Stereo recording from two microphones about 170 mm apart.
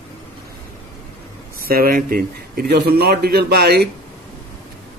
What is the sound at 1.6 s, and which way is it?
A man's voice, 60° right (ahead or behind).